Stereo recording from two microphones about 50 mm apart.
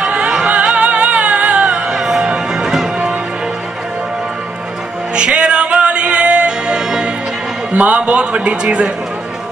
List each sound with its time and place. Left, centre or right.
0.1 s music: right
1.7 s music: centre
5.1 s music: right
7.7 s a man's voice: right